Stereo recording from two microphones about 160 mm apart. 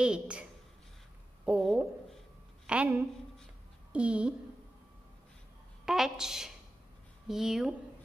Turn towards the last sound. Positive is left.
turn(degrees=-5)  # may be behind; listen again after turning